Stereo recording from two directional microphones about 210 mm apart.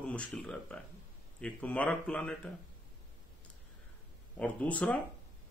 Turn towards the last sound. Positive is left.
turn(degrees=5)  # may be behind; listen again after turning